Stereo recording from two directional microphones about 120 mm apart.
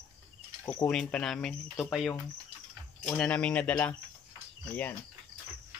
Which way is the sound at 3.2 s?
10° left (ahead or behind).